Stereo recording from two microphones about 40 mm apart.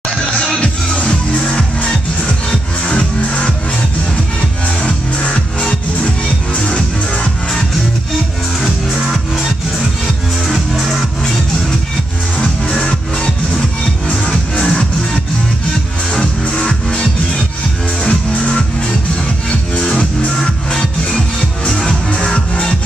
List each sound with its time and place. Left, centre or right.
0.6 s music: left
8.5 s music: centre
10.5 s music: centre
12.6 s music: left
16.5 s music: centre
21.6 s music: left